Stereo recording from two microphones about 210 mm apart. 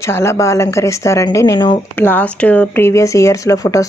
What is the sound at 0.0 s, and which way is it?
Speech, 15° left (ahead or behind).